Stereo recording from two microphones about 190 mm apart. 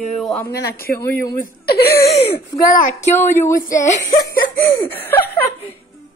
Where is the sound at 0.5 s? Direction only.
50° left (ahead or behind).